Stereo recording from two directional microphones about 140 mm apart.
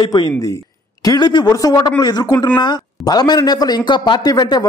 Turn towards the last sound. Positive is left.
turn(degrees=30)  # may be behind; listen again after turning